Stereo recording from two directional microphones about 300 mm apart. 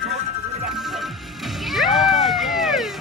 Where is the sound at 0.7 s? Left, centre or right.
Centre.